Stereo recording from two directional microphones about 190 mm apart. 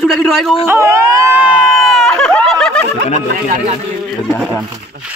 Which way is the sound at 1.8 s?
Centre (ahead or behind).